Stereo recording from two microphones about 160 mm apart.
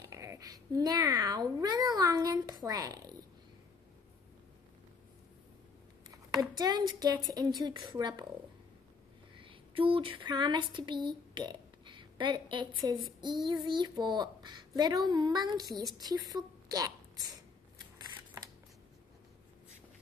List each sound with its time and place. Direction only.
0.1 s speech: 20° right (ahead or behind)
6.6 s speech: 25° right (ahead or behind)
9.4 s speech: 35° right (ahead or behind)
17.9 s scissors: 25° right (ahead or behind)